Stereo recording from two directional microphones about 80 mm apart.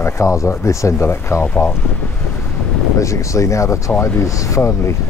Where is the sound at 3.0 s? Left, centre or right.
Left.